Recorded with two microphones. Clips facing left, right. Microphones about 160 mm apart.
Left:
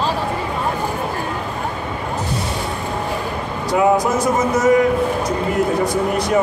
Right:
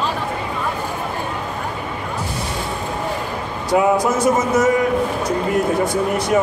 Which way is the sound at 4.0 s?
Centre (ahead or behind).